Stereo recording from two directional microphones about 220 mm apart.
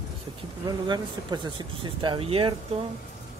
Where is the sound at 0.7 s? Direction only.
20° right (ahead or behind).